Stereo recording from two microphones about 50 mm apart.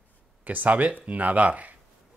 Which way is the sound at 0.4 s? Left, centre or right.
Right.